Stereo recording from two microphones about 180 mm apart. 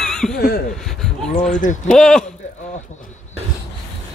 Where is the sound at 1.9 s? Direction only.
5° left (ahead or behind).